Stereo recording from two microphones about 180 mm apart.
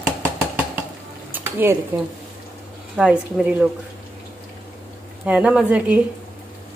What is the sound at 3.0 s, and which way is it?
Speech, 5° right (ahead or behind).